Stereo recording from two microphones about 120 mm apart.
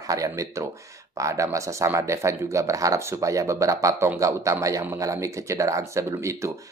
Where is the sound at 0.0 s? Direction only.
30° right (ahead or behind).